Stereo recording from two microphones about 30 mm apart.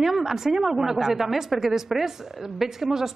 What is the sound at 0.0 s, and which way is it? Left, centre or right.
A woman's voice, centre.